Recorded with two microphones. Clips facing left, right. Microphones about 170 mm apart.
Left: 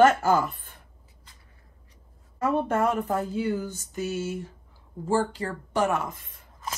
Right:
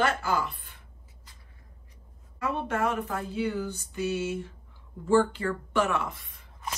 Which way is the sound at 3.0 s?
40° left (ahead or behind).